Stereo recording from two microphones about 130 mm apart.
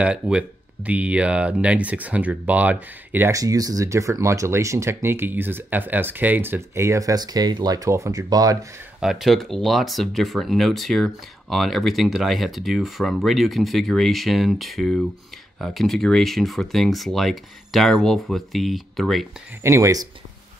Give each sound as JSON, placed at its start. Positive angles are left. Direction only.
{"t": 0.0, "sound": "speech", "side_deg": -10}
{"t": 3.3, "sound": "speech", "side_deg": -25}
{"t": 9.0, "sound": "speech", "side_deg": 0}
{"t": 19.6, "sound": "speech", "side_deg": -25}